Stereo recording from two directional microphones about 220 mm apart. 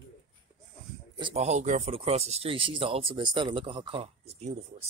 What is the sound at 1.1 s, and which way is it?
Speech, 25° right (ahead or behind).